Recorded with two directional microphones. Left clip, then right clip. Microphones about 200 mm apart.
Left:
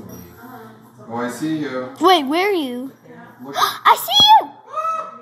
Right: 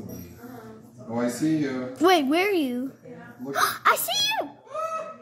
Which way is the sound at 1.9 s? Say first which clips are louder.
Left 6 dB; 40° right (ahead or behind).